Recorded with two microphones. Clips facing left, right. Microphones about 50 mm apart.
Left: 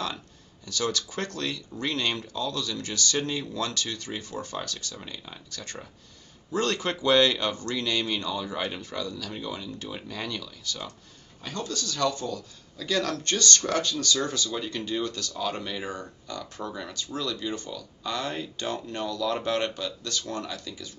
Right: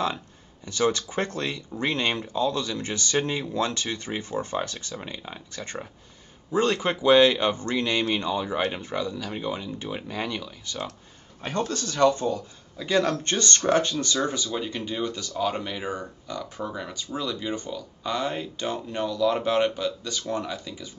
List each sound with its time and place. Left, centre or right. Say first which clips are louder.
0.7 s speech: right 5 dB; right
11.4 s a man's voice: right 5 dB; right; by 20.9 s centre